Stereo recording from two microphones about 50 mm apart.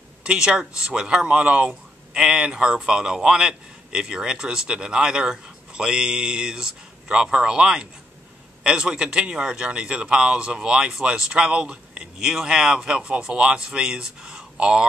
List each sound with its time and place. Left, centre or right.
0.2 s speech: centre
2.1 s speech: centre